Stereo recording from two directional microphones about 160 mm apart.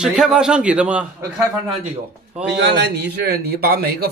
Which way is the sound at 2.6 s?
90° right.